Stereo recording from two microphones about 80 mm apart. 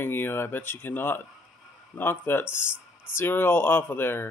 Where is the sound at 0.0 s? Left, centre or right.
Left.